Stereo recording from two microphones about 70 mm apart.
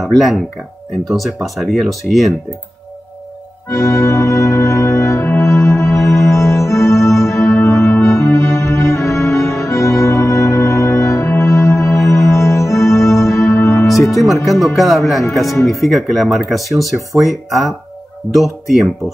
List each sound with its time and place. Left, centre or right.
0.0 s speech: centre
3.6 s music: left
13.8 s speech: centre